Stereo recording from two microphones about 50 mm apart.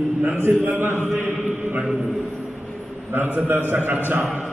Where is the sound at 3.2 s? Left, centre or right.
Right.